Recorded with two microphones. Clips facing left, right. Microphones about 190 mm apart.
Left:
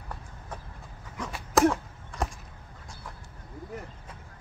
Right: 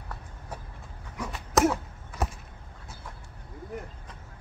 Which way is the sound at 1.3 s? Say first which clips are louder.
Left 1 dB; centre (ahead or behind).